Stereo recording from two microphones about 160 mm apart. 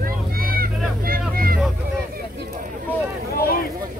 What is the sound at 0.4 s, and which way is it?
Vehicle, 65° right (ahead or behind).